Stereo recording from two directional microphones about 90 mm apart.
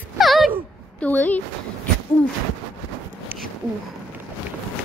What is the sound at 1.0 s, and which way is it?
Speech, 20° left (ahead or behind).